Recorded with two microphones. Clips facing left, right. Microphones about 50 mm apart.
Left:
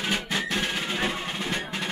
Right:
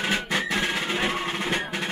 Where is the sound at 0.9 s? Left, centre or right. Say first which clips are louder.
Right 3 dB; right.